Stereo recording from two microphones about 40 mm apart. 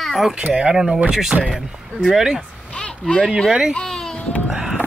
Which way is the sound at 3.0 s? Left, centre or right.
Centre.